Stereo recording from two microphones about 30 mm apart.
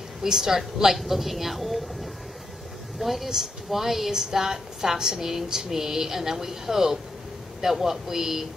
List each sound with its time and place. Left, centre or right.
0.2 s a woman's voice: centre
3.0 s a woman's voice: centre